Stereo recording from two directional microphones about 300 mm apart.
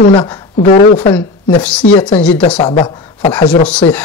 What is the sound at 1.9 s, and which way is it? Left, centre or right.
Speech, centre.